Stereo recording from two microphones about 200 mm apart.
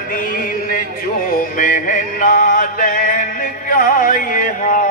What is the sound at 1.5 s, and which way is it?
Music, 40° left (ahead or behind).